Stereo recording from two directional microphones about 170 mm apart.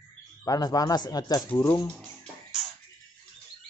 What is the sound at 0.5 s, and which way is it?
Speech, 20° left (ahead or behind).